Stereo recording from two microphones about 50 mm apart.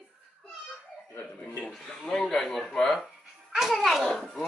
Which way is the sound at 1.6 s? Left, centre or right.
Centre.